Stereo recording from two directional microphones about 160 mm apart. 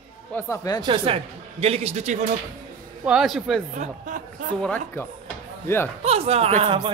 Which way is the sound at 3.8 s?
55° right (ahead or behind).